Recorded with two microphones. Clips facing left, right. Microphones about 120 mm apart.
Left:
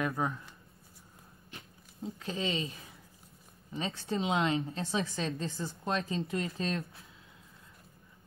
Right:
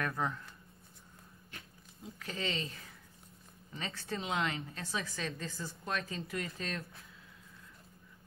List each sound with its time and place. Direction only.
0.0 s speech: 15° left (ahead or behind)
2.1 s a woman's voice: 20° left (ahead or behind)